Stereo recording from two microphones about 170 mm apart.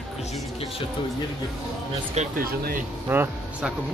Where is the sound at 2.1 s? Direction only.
55° right (ahead or behind).